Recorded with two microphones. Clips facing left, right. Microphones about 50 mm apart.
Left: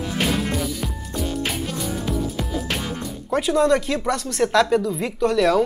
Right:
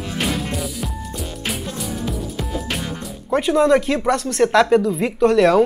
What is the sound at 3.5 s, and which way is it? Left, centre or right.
Speech, centre.